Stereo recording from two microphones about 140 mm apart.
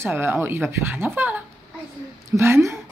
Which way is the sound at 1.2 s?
15° right (ahead or behind).